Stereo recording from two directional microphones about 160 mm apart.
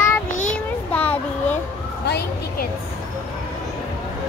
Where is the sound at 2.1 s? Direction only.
80° left.